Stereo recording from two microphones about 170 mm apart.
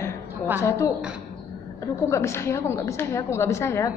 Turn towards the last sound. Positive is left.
turn(degrees=15)  # may be behind; listen again after turning